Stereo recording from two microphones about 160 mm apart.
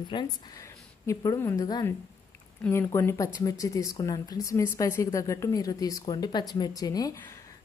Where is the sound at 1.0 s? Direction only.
20° left (ahead or behind).